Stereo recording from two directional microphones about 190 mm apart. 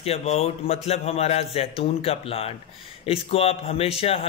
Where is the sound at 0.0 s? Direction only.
30° left (ahead or behind).